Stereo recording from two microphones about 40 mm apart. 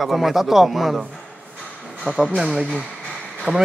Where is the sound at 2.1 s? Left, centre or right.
Right.